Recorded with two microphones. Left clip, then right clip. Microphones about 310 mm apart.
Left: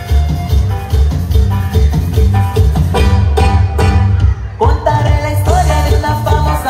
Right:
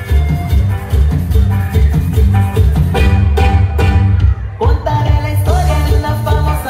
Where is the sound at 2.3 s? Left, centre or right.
Left.